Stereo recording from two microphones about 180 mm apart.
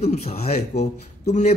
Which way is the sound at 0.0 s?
35° left (ahead or behind).